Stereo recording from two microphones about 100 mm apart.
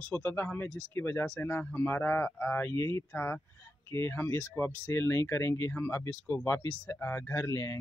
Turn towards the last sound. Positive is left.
turn(degrees=30)  # may be behind; listen again after turning